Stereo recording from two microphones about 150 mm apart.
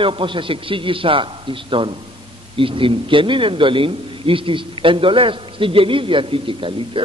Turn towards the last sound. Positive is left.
turn(degrees=-35)  # may be behind; listen again after turning